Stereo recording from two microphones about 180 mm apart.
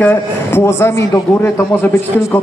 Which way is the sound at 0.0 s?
10° left (ahead or behind).